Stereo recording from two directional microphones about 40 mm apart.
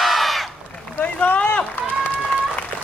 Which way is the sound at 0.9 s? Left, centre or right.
Left.